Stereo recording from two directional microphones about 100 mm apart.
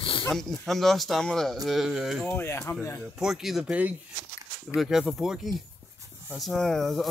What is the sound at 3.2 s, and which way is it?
Speech, 5° right (ahead or behind).